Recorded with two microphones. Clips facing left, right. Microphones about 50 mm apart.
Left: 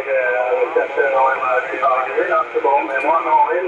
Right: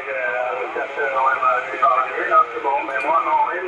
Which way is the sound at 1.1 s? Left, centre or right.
Centre.